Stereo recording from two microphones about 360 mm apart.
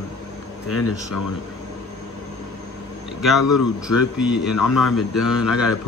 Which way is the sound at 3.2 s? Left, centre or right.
Centre.